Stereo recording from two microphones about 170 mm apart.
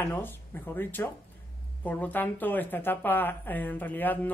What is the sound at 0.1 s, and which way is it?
A woman's voice, 10° left (ahead or behind).